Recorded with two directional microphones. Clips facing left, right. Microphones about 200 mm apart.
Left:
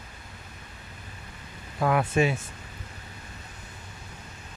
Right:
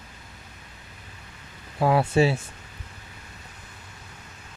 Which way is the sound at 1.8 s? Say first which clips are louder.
Right 3 dB; 30° right (ahead or behind).